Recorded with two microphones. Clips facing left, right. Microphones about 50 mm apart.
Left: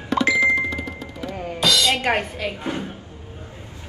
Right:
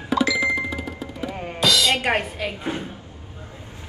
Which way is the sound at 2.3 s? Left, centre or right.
Centre.